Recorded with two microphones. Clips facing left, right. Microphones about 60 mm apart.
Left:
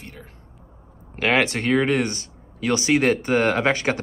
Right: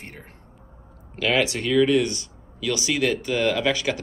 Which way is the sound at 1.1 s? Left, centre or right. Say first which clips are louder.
Left 2 dB; left.